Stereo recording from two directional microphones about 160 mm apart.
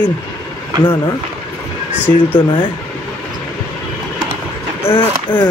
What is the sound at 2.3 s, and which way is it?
Speech, 30° left (ahead or behind).